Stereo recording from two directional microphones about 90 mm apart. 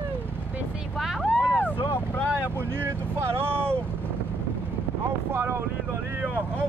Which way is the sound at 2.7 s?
25° right (ahead or behind).